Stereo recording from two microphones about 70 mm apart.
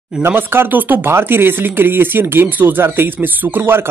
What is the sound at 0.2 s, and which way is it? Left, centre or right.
Speech, right.